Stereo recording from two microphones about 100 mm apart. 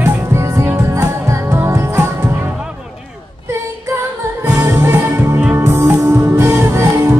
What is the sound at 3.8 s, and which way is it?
Music, 25° right (ahead or behind).